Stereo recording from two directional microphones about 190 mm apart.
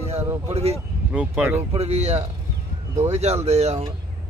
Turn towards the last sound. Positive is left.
turn(degrees=-35)  # may be behind; listen again after turning